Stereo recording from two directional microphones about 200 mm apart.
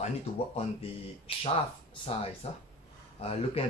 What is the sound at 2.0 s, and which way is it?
Speech, 30° left (ahead or behind).